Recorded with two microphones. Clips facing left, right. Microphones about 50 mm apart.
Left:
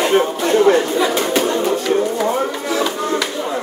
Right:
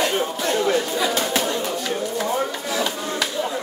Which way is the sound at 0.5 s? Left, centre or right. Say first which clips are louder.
Left 9 dB; left.